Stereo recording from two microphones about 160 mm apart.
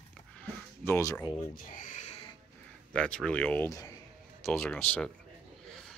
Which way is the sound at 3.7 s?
20° left (ahead or behind).